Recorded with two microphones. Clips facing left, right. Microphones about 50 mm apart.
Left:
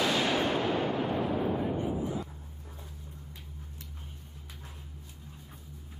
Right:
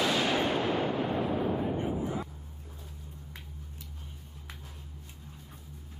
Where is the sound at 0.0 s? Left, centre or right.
Centre.